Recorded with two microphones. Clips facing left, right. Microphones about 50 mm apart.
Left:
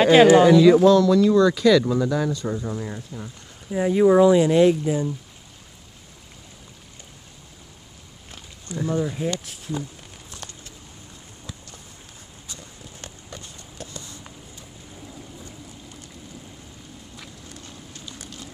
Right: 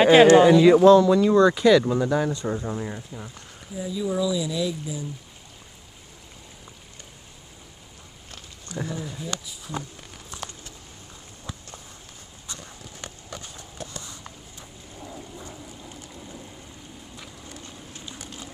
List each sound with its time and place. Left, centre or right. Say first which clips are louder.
0.0 s speech: even; centre
0.4 s speech: left 1 dB; centre
2.6 s speech: even; centre
3.7 s speech: left 11 dB; left
8.9 s speech: left 8 dB; left
17.9 s vehicle: right 1 dB; centre